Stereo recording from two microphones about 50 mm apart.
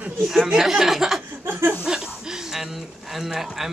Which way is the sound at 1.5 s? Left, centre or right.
Right.